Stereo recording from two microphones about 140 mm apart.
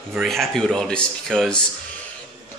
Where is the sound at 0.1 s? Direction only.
Centre (ahead or behind).